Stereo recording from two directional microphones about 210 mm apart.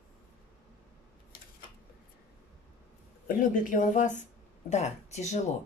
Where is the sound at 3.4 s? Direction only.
40° left (ahead or behind).